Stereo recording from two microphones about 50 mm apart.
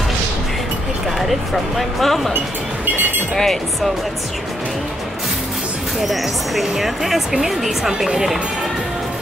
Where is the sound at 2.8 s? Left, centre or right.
Right.